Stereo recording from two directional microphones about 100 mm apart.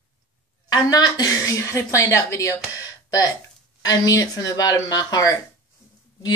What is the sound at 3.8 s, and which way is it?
A woman's voice, 40° left (ahead or behind).